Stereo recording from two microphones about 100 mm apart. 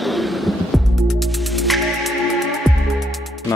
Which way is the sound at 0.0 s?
Centre (ahead or behind).